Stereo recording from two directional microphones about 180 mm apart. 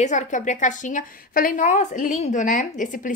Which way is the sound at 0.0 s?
40° left (ahead or behind).